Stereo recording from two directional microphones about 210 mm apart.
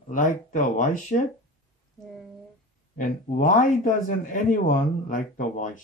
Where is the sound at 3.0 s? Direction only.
40° left (ahead or behind).